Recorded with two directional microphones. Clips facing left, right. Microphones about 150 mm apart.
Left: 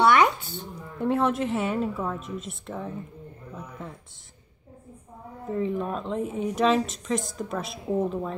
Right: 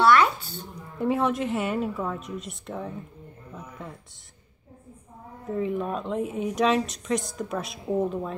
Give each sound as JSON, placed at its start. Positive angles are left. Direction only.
{"t": 0.1, "sound": "music", "side_deg": 20}
{"t": 0.9, "sound": "speech", "side_deg": -5}
{"t": 5.5, "sound": "speech", "side_deg": 0}